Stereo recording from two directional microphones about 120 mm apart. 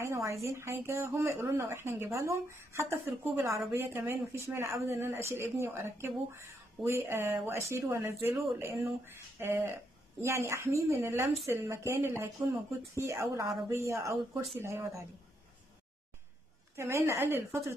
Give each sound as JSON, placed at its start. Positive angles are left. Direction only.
{"t": 0.0, "sound": "a woman's voice", "side_deg": -25}
{"t": 16.7, "sound": "a woman's voice", "side_deg": -20}